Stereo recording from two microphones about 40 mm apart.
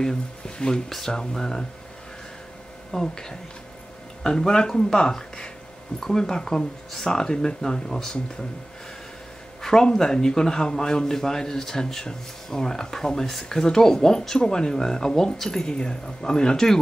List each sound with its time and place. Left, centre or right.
0.0 s speech: centre
2.9 s speech: centre
9.6 s speech: centre